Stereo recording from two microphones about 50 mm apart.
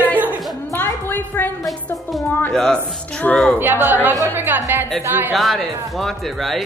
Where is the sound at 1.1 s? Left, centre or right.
Left.